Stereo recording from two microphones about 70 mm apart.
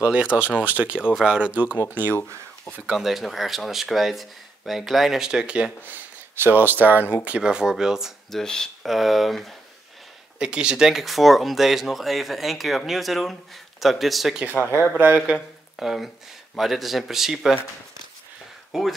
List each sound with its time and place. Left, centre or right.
0.0 s speech: centre
2.9 s speech: centre
5.9 s speech: right
7.2 s speech: centre
8.3 s speech: centre
10.4 s speech: centre
14.5 s speech: left
15.0 s speech: right
15.7 s speech: centre
18.7 s speech: centre